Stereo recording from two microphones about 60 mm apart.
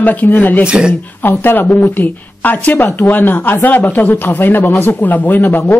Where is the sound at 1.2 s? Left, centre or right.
Left.